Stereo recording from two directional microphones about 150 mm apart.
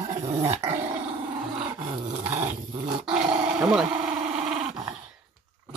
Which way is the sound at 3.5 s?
5° right (ahead or behind).